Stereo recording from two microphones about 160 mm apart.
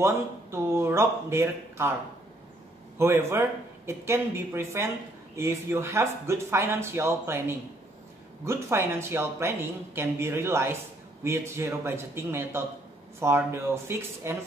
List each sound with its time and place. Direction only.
0.0 s speech: 15° right (ahead or behind)
3.0 s speech: 15° right (ahead or behind)